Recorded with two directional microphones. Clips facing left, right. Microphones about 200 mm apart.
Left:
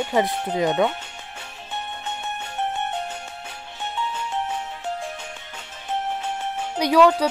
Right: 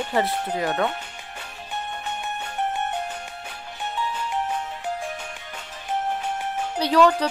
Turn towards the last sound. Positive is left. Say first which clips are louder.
# left 2 dB
turn(degrees=10)  # may be behind; listen again after turning